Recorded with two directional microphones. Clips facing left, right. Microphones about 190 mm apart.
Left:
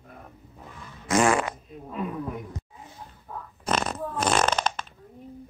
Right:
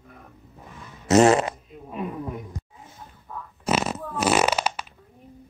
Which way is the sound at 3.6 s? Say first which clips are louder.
Right 2 dB; 5° right (ahead or behind).